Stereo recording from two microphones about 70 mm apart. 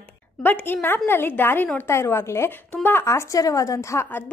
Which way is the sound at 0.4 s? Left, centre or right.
Left.